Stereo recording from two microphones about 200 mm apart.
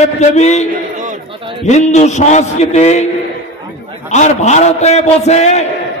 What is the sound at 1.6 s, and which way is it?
A man's voice, 35° left (ahead or behind).